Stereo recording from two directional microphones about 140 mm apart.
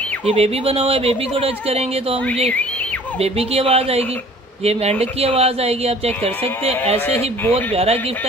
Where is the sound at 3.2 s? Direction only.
45° right (ahead or behind).